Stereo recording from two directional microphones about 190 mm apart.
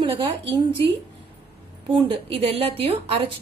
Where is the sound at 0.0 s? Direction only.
30° right (ahead or behind).